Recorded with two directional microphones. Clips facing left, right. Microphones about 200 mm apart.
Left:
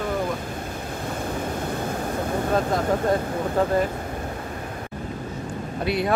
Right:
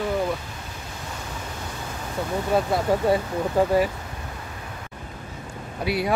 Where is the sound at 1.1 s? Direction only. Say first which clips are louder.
Left 9 dB; 55° left (ahead or behind).